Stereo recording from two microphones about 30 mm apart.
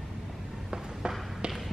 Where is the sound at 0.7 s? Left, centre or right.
Centre.